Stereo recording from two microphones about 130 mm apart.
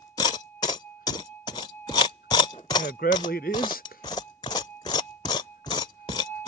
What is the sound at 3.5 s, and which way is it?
Speech, 90° left.